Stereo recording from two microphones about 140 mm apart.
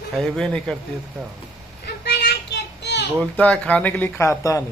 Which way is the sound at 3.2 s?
5° left (ahead or behind).